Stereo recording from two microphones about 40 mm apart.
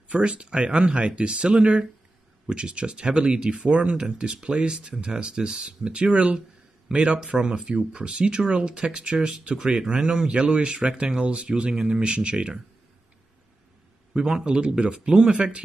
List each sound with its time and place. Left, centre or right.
0.2 s speech: right
11.7 s speech: centre
12.0 s speech: right
14.1 s speech: right